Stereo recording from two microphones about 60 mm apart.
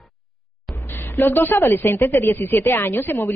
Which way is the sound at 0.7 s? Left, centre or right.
Left.